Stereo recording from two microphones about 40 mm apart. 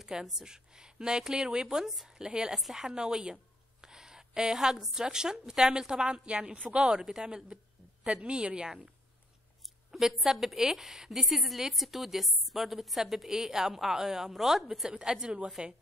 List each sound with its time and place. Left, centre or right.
0.0 s a woman's voice: centre
2.5 s a woman's voice: centre; by 8.6 s right
9.8 s a sound: centre
10.2 s a woman's voice: centre
14.9 s a woman's voice: centre